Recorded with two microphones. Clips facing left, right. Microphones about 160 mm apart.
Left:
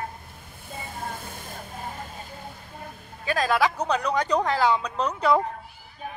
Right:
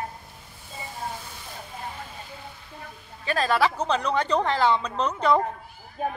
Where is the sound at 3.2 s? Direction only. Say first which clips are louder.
Even; 10° left (ahead or behind).